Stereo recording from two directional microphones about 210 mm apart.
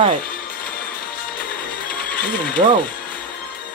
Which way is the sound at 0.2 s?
45° left (ahead or behind).